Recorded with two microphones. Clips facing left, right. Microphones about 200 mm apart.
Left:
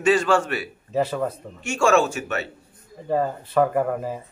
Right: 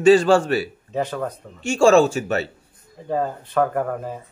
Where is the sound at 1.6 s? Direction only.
30° right (ahead or behind).